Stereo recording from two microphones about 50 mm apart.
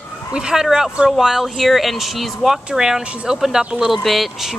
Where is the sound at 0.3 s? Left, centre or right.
Centre.